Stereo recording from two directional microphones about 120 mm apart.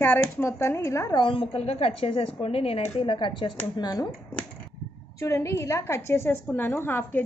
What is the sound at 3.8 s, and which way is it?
Speech, 35° left (ahead or behind).